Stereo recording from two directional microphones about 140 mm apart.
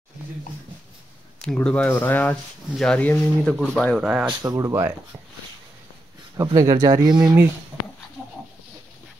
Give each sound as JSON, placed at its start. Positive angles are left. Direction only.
{"t": 1.4, "sound": "speech", "side_deg": 5}
{"t": 4.0, "sound": "speech", "side_deg": -5}
{"t": 4.4, "sound": "speech", "side_deg": -25}
{"t": 6.3, "sound": "speech", "side_deg": -25}